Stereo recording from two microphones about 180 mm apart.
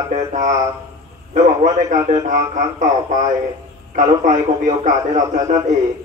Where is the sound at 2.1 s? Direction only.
40° right (ahead or behind).